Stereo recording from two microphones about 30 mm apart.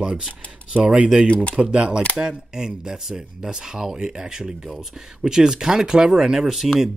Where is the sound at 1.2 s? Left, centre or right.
Left.